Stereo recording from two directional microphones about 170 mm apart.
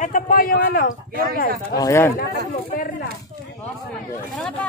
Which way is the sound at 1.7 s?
20° left (ahead or behind).